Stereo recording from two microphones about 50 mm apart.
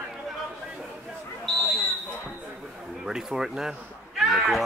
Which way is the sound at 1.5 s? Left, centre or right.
Centre.